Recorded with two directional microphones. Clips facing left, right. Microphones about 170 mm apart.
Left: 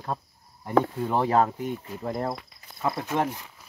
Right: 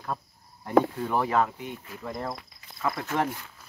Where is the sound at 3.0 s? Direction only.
15° left (ahead or behind).